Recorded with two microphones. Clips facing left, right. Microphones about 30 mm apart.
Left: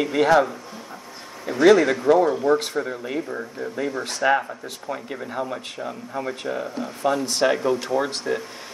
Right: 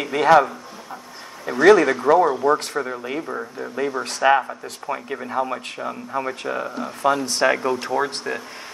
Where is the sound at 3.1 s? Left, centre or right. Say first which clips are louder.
Right 1 dB; centre.